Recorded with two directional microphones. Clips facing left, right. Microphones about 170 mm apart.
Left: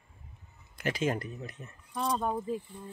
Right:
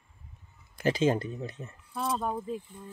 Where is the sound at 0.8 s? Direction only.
25° right (ahead or behind).